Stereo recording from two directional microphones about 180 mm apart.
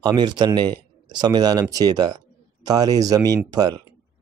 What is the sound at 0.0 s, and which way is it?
Speech, 25° right (ahead or behind).